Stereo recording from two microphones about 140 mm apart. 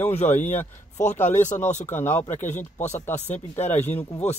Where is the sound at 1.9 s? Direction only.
15° left (ahead or behind).